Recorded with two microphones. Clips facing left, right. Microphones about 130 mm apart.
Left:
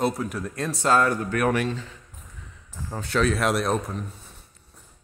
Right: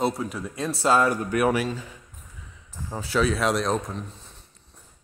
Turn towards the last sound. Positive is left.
turn(degrees=5)  # may be behind; listen again after turning